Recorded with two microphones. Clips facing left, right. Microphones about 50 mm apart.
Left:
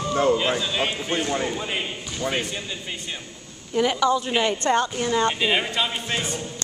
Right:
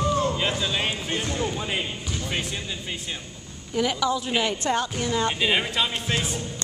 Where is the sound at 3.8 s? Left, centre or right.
Centre.